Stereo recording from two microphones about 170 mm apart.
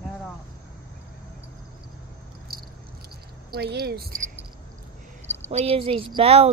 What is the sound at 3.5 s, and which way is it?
Speech, 65° right (ahead or behind).